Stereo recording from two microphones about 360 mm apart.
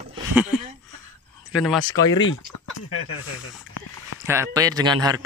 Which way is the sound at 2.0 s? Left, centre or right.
Left.